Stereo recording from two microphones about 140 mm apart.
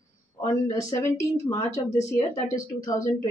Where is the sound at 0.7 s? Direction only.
25° left (ahead or behind).